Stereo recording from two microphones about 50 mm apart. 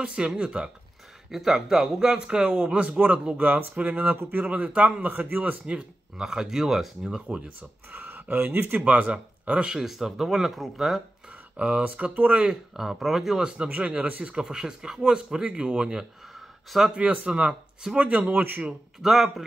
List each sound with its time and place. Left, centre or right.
0.0 s a man's voice: centre
5.7 s speech: right
6.2 s speech: centre
7.2 s speech: right
7.9 s speech: right
8.8 s speech: right
9.8 s speech: centre
11.5 s speech: right
11.8 s a man's voice: right
12.4 s speech: centre
13.4 s speech: centre
13.7 s speech: right
14.2 s a man's voice: centre; by 18.6 s right
18.9 s speech: centre